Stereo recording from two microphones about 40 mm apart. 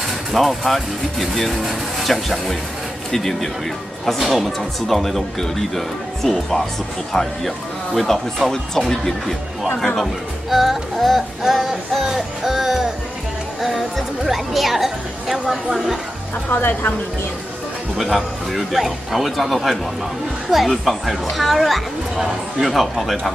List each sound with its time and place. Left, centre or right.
0.3 s speech: centre
10.5 s speech: centre
11.4 s music: centre
13.6 s speech: centre
16.4 s speech: left
17.9 s speech: centre
22.1 s music: centre
22.7 s speech: centre